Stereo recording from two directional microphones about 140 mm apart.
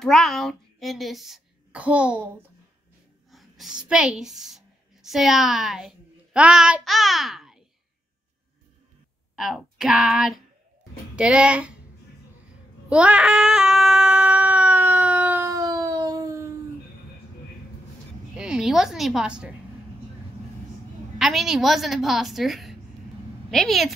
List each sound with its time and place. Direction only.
0.0 s a woman's voice: centre (ahead or behind)
3.3 s a woman's voice: centre (ahead or behind)
9.3 s speech: 5° right (ahead or behind)
12.9 s baby cry: 10° right (ahead or behind)
15.4 s a sound: 25° right (ahead or behind)
18.3 s a woman's voice: 5° right (ahead or behind)
21.2 s a woman's voice: centre (ahead or behind)